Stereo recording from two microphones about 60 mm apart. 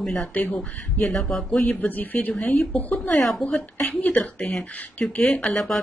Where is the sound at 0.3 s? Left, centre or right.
Left.